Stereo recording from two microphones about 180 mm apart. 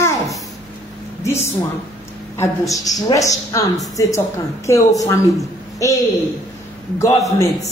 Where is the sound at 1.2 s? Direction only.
15° left (ahead or behind).